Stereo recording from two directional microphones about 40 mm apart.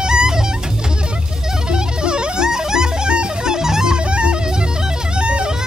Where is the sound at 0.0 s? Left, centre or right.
Centre.